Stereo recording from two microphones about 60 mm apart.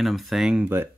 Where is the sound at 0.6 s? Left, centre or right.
Right.